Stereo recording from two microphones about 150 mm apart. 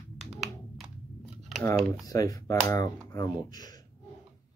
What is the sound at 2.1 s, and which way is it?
Speech, 25° left (ahead or behind).